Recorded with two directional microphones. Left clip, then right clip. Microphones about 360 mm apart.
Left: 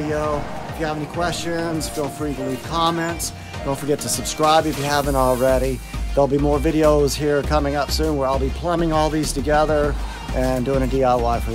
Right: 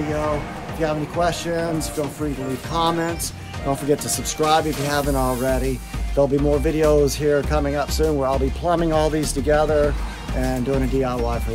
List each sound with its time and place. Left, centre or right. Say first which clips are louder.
0.7 s speech: right 3 dB; centre